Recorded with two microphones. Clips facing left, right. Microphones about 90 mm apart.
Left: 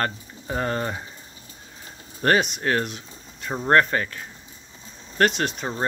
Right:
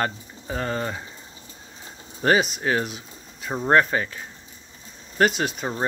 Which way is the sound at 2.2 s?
5° right (ahead or behind).